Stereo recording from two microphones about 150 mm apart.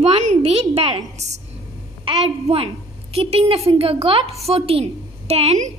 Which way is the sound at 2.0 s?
40° right (ahead or behind).